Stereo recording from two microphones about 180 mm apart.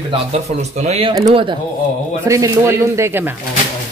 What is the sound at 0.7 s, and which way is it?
Speech, 35° right (ahead or behind).